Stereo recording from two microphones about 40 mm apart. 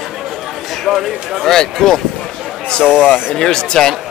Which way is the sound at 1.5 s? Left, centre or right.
Centre.